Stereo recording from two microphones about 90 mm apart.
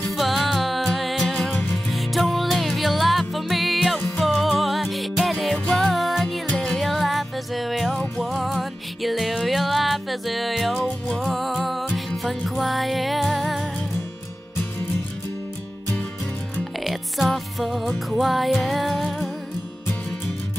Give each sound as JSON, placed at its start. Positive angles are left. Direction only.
{"t": 0.1, "sound": "music", "side_deg": 0}
{"t": 1.5, "sound": "music", "side_deg": 20}
{"t": 1.9, "sound": "music", "side_deg": 0}
{"t": 16.8, "sound": "music", "side_deg": 0}